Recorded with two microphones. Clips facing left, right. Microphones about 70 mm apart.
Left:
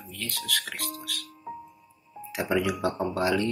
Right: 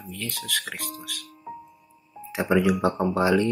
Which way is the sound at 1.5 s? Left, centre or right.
Centre.